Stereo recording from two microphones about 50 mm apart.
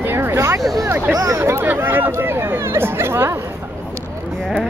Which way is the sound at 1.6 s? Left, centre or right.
Right.